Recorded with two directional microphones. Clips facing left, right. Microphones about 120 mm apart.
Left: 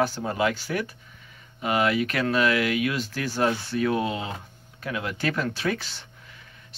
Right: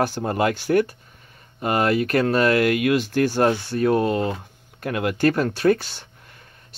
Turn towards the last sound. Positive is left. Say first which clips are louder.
# right 8 dB
turn(degrees=-50)  # may be behind; listen again after turning